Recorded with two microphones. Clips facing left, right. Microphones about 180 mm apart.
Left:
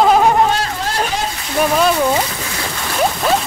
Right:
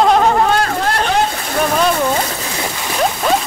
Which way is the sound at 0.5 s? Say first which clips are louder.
Right 4 dB; 55° right (ahead or behind).